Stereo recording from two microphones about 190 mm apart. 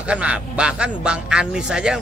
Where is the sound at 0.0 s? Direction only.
5° right (ahead or behind).